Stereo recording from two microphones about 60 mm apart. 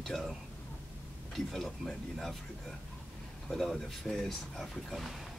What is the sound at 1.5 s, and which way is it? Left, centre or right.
Speech, centre.